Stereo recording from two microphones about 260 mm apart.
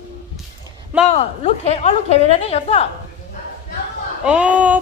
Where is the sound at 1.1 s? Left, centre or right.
Left.